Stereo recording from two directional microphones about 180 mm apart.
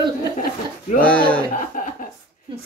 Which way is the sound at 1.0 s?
5° left (ahead or behind).